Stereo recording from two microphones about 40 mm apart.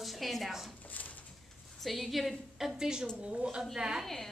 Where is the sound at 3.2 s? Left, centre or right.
Right.